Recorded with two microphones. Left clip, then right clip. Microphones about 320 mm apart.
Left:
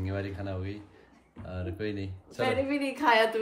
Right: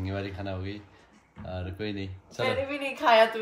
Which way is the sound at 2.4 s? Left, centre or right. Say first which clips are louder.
Even; centre.